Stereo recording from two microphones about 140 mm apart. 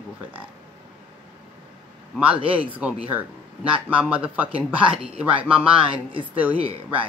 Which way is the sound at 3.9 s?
10° right (ahead or behind).